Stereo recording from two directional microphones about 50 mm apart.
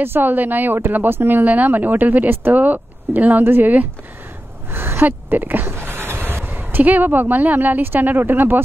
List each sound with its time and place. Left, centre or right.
0.0 s speech: right
1.4 s speech: right
4.6 s speech: right